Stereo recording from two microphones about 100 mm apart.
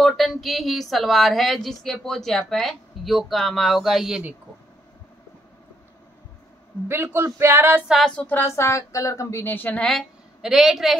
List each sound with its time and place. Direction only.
0.0 s speech: centre (ahead or behind)
6.9 s speech: 25° right (ahead or behind)
8.2 s speech: 20° left (ahead or behind)
8.5 s a woman's voice: 30° left (ahead or behind)
9.8 s a woman's voice: centre (ahead or behind)